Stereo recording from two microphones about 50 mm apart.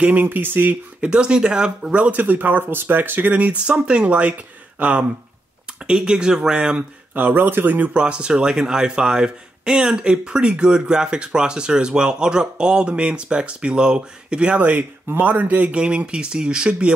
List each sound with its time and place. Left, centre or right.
0.0 s speech: right
1.0 s speech: centre
1.9 s speech: right
5.9 s speech: centre
6.8 s speech: right
7.9 s speech: right
14.6 s speech: right
15.8 s speech: right